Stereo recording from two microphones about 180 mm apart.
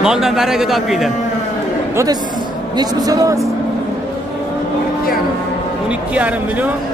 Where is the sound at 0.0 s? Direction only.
Centre (ahead or behind).